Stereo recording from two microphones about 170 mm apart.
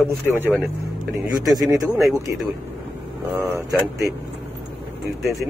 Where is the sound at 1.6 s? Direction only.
20° right (ahead or behind).